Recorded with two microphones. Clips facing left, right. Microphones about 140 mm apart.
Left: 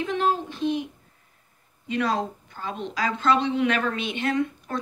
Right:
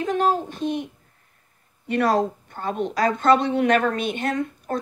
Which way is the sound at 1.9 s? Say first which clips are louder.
Right 5 dB; 55° right (ahead or behind).